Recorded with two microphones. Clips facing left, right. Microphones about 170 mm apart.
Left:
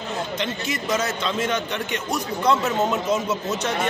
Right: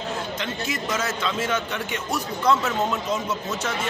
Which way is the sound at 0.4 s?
Centre (ahead or behind).